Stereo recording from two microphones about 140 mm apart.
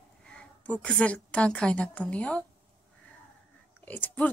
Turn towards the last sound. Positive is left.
turn(degrees=15)  # may be behind; listen again after turning